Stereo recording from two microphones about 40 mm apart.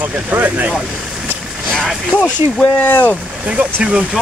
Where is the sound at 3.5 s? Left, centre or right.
Right.